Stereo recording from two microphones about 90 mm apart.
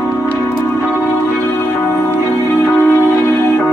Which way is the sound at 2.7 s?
30° left (ahead or behind).